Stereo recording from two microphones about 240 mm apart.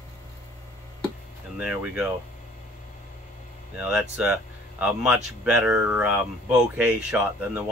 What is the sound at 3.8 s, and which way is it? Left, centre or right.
Speech, centre.